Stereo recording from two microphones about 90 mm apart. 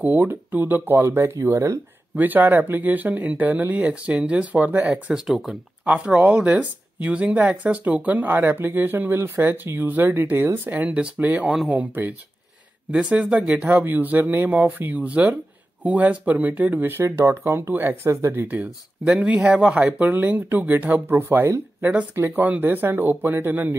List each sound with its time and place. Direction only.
0.0 s speech: 20° right (ahead or behind)
2.1 s speech: 20° right (ahead or behind)
11.4 s speech: 5° right (ahead or behind)
11.7 s speech: 20° right (ahead or behind)